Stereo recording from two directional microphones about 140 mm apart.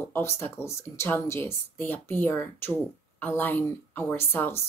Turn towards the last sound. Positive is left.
turn(degrees=15)  # may be behind; listen again after turning